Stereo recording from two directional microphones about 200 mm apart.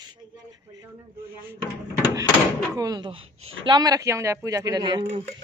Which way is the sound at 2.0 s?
15° right (ahead or behind).